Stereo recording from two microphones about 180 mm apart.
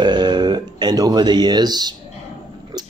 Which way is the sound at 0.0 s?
25° right (ahead or behind).